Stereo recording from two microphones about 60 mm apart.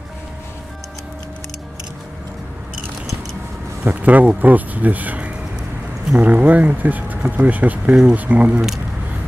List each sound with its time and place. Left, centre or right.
3.8 s speech: right